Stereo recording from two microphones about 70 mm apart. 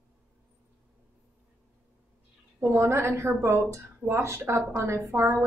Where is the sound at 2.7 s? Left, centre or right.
Right.